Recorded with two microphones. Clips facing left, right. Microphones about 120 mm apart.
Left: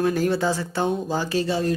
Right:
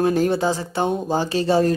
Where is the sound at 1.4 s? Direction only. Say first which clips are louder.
Right 6 dB; 45° right (ahead or behind).